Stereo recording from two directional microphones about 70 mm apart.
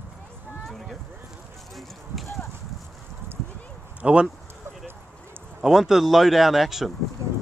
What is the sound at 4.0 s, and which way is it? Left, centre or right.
Speech, centre.